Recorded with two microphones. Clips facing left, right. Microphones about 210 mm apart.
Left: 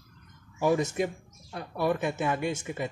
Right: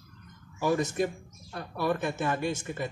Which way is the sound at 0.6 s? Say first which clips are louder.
Left 1 dB; 20° left (ahead or behind).